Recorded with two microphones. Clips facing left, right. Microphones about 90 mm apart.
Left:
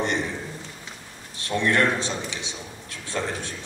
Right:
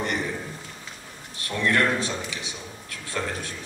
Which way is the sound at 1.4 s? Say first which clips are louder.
Left 1 dB; 25° left (ahead or behind).